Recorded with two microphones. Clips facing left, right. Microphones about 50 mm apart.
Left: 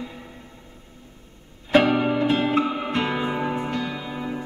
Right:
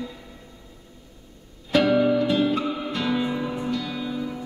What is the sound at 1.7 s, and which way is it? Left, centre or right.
Music, left.